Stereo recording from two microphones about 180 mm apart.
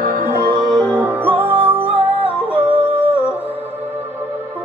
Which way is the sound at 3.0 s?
35° left (ahead or behind).